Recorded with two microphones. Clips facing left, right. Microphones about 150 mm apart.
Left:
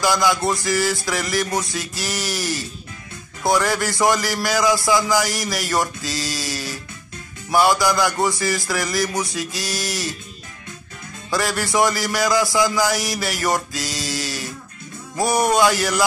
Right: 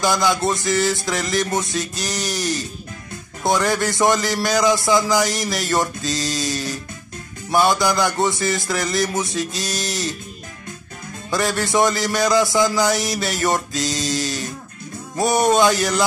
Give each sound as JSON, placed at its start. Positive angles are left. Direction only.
{"t": 0.0, "sound": "a man's voice", "side_deg": -20}
{"t": 11.3, "sound": "a man's voice", "side_deg": -20}